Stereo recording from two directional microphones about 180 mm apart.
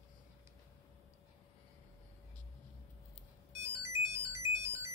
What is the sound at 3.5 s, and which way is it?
Ringtone, 15° right (ahead or behind).